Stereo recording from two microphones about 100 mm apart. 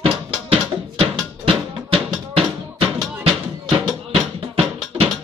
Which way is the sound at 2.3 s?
75° right (ahead or behind).